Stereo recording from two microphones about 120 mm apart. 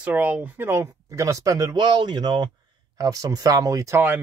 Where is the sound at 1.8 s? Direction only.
40° right (ahead or behind).